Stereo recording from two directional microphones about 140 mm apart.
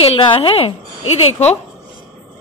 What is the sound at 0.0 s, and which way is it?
A woman's voice, 40° left (ahead or behind).